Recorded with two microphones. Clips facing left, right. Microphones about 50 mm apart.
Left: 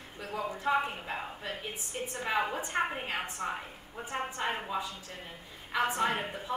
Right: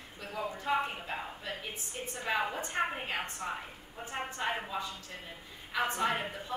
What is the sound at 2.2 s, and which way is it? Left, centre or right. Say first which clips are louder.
Speech: left 1 dB; centre.